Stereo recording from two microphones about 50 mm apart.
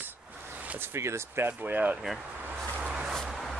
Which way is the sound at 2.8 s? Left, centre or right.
Right.